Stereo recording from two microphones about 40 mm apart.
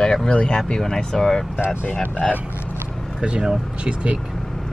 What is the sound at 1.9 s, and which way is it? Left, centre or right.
Speech, left.